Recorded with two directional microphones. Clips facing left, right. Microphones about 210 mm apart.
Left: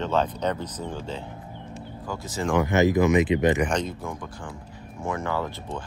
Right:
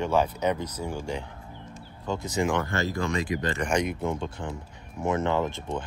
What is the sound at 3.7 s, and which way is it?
Speech, 10° right (ahead or behind).